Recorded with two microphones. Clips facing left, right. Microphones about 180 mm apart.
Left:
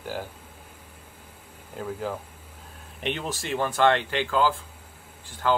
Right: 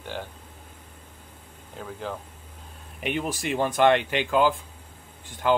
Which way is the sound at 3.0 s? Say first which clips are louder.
Right 2 dB; 10° right (ahead or behind).